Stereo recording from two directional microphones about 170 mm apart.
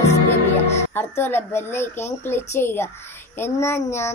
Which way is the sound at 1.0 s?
10° left (ahead or behind).